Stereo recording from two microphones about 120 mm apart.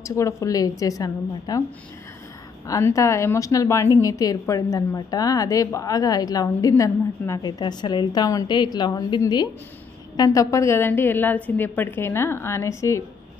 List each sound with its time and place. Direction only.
0.1 s a woman's voice: 25° left (ahead or behind)
2.6 s a woman's voice: 25° left (ahead or behind)